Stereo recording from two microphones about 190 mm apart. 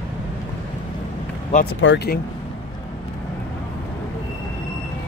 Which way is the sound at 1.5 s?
40° left (ahead or behind).